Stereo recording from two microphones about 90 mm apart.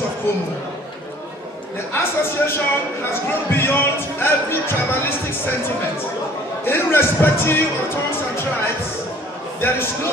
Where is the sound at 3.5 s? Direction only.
25° left (ahead or behind).